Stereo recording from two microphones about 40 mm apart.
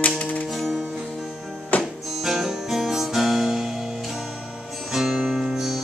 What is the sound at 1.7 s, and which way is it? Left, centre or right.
Music, left.